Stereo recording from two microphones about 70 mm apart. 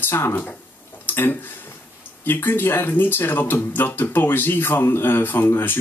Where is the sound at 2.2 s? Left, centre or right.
Left.